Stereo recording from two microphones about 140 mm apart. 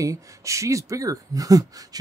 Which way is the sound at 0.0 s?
25° right (ahead or behind).